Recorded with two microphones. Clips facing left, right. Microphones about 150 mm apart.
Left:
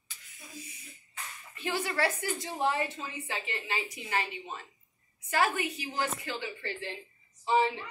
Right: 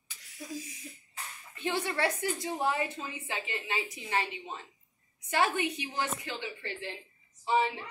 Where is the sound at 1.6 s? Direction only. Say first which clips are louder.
Even; 25° right (ahead or behind).